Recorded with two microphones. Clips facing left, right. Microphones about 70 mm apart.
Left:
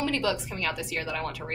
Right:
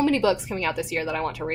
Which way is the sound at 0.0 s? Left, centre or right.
Right.